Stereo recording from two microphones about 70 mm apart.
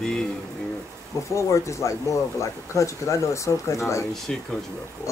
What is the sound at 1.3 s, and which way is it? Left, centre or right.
Speech, left.